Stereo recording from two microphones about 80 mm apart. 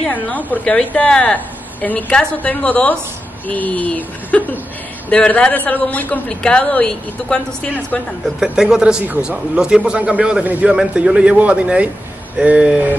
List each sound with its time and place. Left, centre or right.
0.1 s a man's voice: centre
8.4 s a man's voice: centre